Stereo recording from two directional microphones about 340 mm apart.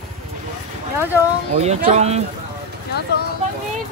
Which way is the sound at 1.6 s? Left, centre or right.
Centre.